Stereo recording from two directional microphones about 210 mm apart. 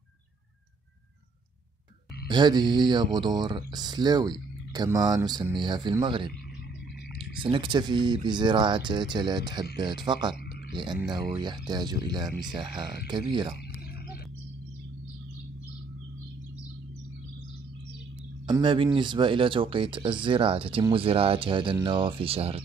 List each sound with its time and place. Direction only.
2.2 s speech: 20° right (ahead or behind)
7.4 s speech: 25° right (ahead or behind)
18.5 s speech: 25° right (ahead or behind)